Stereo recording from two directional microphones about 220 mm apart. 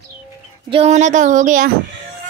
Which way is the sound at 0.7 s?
30° right (ahead or behind).